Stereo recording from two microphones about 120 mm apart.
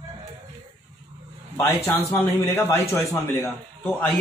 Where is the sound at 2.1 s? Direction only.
20° left (ahead or behind).